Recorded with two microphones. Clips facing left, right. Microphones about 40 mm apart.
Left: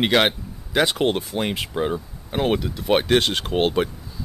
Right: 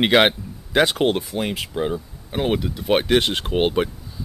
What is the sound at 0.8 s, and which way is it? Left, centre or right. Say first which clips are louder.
Speech: right 1 dB; centre.